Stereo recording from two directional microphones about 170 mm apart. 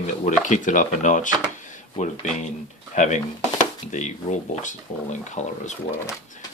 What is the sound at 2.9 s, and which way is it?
Speech, 45° left (ahead or behind).